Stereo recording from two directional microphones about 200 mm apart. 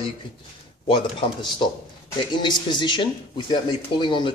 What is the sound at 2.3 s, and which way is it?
Speech, 20° left (ahead or behind).